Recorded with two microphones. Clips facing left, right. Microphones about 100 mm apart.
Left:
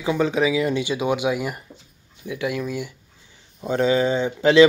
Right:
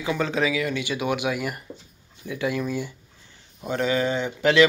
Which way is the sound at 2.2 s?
5° left (ahead or behind).